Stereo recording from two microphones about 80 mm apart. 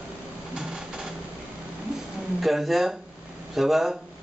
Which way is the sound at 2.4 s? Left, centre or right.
Centre.